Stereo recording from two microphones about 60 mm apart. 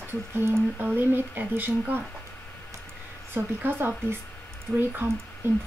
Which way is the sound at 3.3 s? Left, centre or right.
Right.